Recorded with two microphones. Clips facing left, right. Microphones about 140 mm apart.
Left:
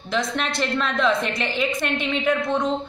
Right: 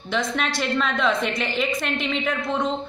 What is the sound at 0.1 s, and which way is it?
Speech, centre (ahead or behind).